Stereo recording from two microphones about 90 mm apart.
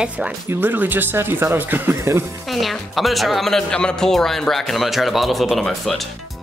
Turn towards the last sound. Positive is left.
turn(degrees=0)  # may be behind; listen again after turning